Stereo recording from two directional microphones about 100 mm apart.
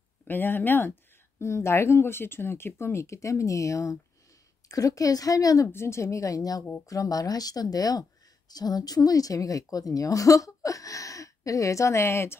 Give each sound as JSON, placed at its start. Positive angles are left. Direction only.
{"t": 0.3, "sound": "a woman's voice", "side_deg": 20}